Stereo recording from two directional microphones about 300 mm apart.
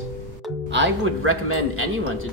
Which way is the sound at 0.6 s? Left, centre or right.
Right.